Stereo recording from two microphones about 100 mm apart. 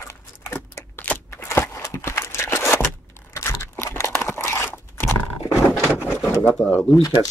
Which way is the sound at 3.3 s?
30° left (ahead or behind).